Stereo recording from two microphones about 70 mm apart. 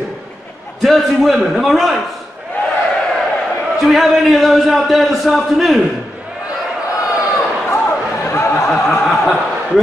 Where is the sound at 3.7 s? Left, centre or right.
Centre.